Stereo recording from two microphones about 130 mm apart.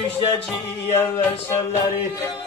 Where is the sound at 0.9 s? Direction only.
20° left (ahead or behind).